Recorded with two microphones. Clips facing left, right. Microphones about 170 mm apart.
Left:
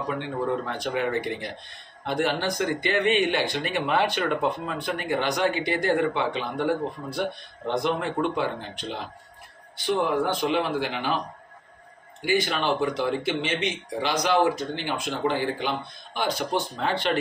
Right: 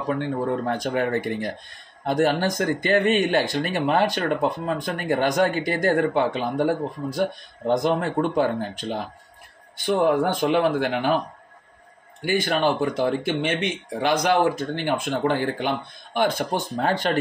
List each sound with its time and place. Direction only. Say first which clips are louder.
0.7 s speech: right 4 dB; 45° right (ahead or behind)
12.3 s speech: right 3 dB; 50° right (ahead or behind)